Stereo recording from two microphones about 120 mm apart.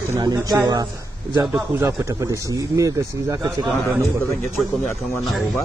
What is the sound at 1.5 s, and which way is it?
A man's voice, 20° right (ahead or behind).